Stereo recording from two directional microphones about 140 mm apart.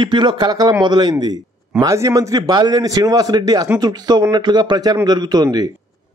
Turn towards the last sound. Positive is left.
turn(degrees=-30)  # may be behind; listen again after turning